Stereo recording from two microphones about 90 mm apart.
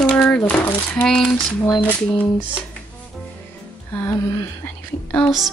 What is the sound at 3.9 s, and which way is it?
Music, 30° left (ahead or behind).